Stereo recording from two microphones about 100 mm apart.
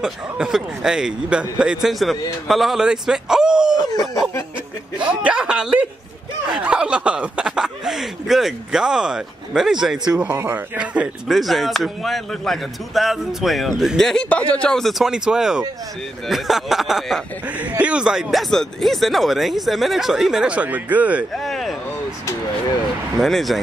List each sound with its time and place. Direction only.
0.0 s speech: 5° right (ahead or behind)
3.7 s a sound: 40° left (ahead or behind)
5.2 s speech: 10° right (ahead or behind)
10.3 s speech: 20° right (ahead or behind); by 17.2 s centre (ahead or behind)
17.5 s speech: 15° right (ahead or behind)
21.4 s a sound: centre (ahead or behind)
23.2 s speech: centre (ahead or behind)